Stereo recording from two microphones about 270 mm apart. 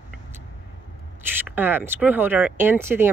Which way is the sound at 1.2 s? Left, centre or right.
Centre.